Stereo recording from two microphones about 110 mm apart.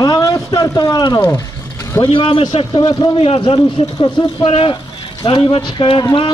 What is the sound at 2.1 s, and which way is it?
Speech, 55° left (ahead or behind).